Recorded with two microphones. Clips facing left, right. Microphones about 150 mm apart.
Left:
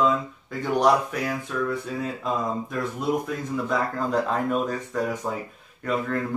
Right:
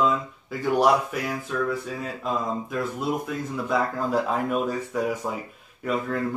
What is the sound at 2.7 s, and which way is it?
Speech, 5° right (ahead or behind).